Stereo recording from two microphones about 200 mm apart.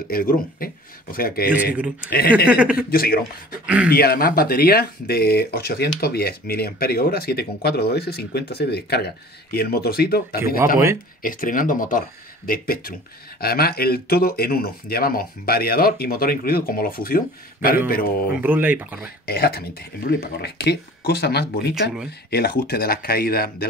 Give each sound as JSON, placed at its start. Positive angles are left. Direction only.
{"t": 0.1, "sound": "speech", "side_deg": 45}
{"t": 1.5, "sound": "speech", "side_deg": -10}
{"t": 2.0, "sound": "speech", "side_deg": 50}
{"t": 2.4, "sound": "speech", "side_deg": -5}
{"t": 2.9, "sound": "speech", "side_deg": 50}
{"t": 3.6, "sound": "speech", "side_deg": -5}
{"t": 3.9, "sound": "speech", "side_deg": 50}
{"t": 18.4, "sound": "speech", "side_deg": -10}
{"t": 19.2, "sound": "speech", "side_deg": 50}